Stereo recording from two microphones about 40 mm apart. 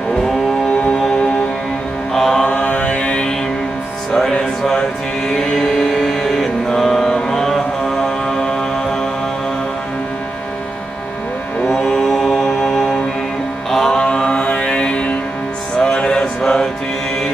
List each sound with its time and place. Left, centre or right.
2.1 s mantra: centre
2.4 s mantra: left
5.3 s music: centre
11.7 s music: centre
13.9 s mantra: left
15.8 s a sound: centre